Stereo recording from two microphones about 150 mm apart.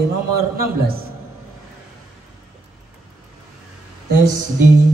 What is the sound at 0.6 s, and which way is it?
Speech, 85° right.